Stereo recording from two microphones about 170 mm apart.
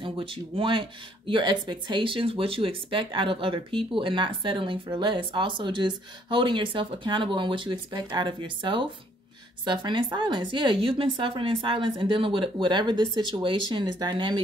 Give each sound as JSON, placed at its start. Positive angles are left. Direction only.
{"t": 0.0, "sound": "speech", "side_deg": -30}